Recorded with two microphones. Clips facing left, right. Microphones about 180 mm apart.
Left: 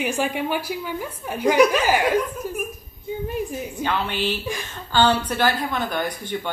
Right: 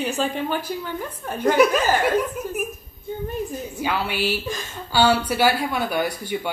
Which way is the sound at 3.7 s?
10° right (ahead or behind).